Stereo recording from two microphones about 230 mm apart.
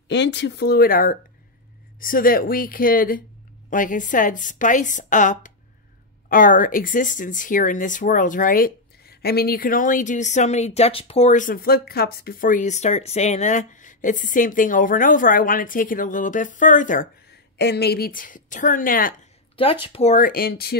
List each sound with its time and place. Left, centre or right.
0.1 s speech: left
17.6 s speech: left
19.5 s speech: left